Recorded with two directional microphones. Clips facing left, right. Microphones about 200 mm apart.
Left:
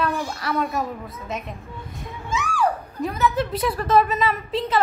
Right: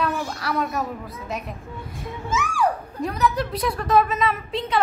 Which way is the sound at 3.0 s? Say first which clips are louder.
Left 1 dB; centre (ahead or behind).